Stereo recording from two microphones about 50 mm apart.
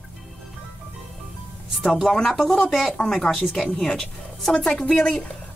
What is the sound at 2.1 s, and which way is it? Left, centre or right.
Speech, centre.